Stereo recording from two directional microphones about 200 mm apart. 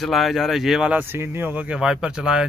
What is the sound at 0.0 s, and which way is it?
Speech, centre (ahead or behind).